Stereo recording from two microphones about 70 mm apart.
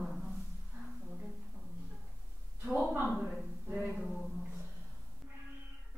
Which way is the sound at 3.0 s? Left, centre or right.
Centre.